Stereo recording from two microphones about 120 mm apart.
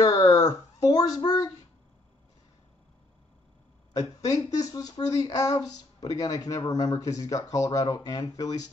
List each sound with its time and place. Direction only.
0.0 s speech: 30° left (ahead or behind)
3.9 s speech: 30° left (ahead or behind)